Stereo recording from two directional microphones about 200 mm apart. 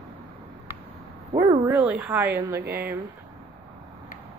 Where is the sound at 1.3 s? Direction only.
10° right (ahead or behind).